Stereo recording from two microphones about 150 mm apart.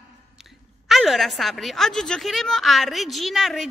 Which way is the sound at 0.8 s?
Centre (ahead or behind).